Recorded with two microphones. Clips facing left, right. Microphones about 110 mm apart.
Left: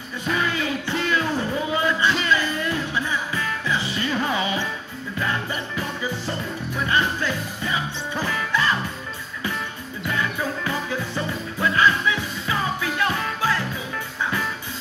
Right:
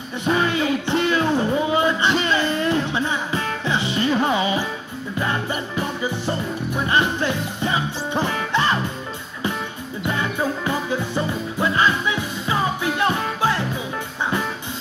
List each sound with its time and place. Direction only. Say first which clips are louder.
0.2 s music: right 4 dB; 30° right (ahead or behind)
5.8 s music: right 4 dB; 25° right (ahead or behind)
10.1 s music: right 2 dB; 25° right (ahead or behind)